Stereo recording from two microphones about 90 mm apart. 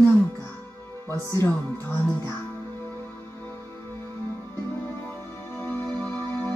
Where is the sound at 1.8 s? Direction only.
25° left (ahead or behind).